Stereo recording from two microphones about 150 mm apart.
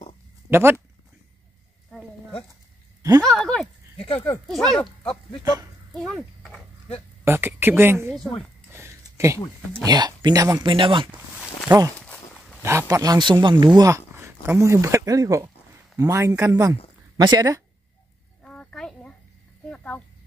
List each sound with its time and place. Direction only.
0.5 s speech: 15° right (ahead or behind)
3.0 s a sound: 25° right (ahead or behind)
3.3 s speech: 5° left (ahead or behind)
5.4 s speech: 25° right (ahead or behind)
5.9 s a sound: centre (ahead or behind)
7.2 s speech: 15° right (ahead or behind)
8.7 s a sound: 20° right (ahead or behind)
9.8 s speech: 30° right (ahead or behind)
10.7 s speech: 35° right (ahead or behind)
11.1 s speech: 10° right (ahead or behind)
12.6 s speech: 20° right (ahead or behind)
18.4 s a sound: 5° left (ahead or behind)
19.7 s speech: 10° left (ahead or behind)